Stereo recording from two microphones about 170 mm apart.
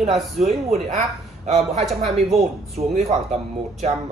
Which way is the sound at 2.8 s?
40° right (ahead or behind).